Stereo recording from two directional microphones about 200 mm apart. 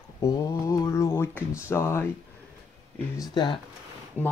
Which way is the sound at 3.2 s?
20° left (ahead or behind).